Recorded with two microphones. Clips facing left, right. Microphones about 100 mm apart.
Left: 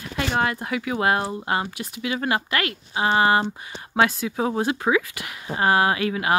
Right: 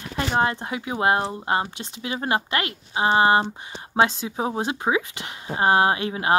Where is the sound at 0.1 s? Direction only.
30° right (ahead or behind).